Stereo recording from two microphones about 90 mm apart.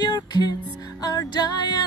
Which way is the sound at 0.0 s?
50° left (ahead or behind).